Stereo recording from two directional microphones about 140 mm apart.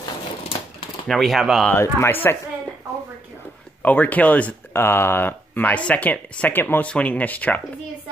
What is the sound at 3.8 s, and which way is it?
Speech, 10° left (ahead or behind).